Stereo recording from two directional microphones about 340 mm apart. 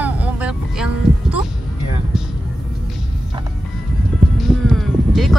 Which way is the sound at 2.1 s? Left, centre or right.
Centre.